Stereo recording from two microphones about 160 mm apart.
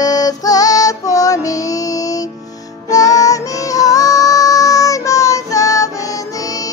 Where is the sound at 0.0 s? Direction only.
25° left (ahead or behind).